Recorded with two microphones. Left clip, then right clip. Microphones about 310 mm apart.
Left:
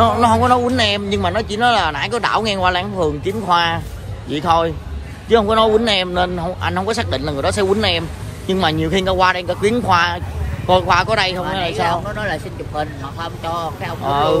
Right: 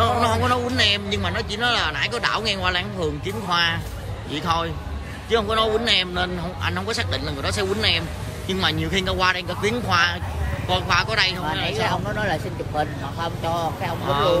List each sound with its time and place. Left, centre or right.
0.0 s speech: centre
11.8 s speech: left
14.0 s speech: centre